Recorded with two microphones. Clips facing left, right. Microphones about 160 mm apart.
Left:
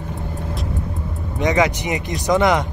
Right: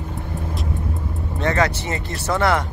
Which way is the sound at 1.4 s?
15° left (ahead or behind).